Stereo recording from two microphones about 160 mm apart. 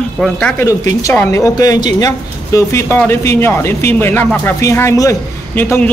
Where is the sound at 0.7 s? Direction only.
15° left (ahead or behind).